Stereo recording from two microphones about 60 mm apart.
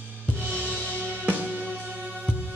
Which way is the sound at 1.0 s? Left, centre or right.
Right.